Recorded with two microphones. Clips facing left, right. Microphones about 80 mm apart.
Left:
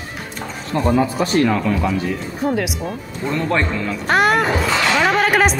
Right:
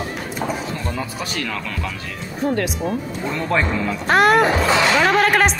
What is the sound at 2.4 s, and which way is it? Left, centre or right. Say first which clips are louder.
Speech: even; centre.